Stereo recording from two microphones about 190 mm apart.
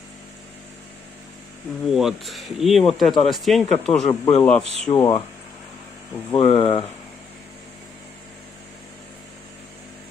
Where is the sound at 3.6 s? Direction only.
35° left (ahead or behind).